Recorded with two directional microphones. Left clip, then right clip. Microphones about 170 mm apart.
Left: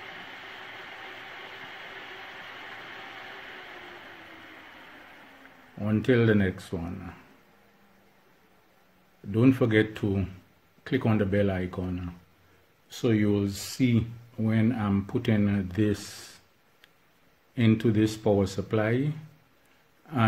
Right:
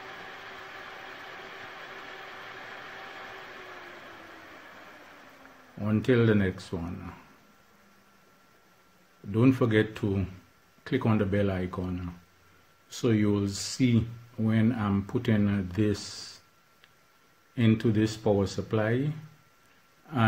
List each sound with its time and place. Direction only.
5.8 s speech: centre (ahead or behind)
9.3 s speech: centre (ahead or behind)
17.6 s speech: 10° left (ahead or behind)